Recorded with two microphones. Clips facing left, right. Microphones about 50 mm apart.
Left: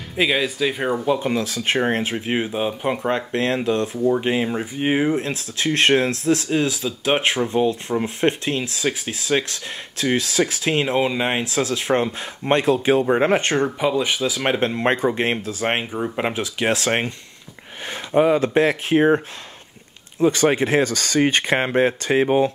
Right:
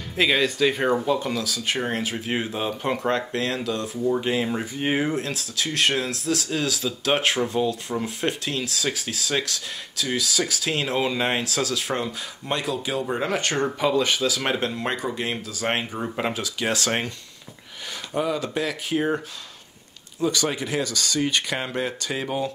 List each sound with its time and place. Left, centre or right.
0.1 s speech: centre
1.3 s speech: left
4.1 s speech: left
13.7 s speech: centre; by 15.3 s left
15.4 s speech: left
18.1 s speech: left